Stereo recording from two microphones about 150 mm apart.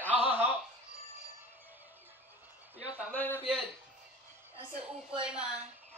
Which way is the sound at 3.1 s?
10° left (ahead or behind).